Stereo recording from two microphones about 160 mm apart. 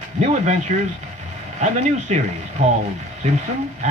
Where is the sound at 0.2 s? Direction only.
45° right (ahead or behind).